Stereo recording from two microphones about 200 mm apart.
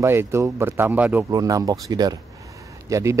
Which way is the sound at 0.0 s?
10° right (ahead or behind).